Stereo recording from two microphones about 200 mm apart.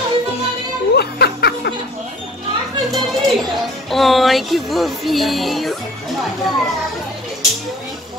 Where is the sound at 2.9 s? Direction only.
Centre (ahead or behind).